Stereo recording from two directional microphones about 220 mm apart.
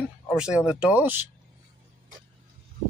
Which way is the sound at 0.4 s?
5° right (ahead or behind).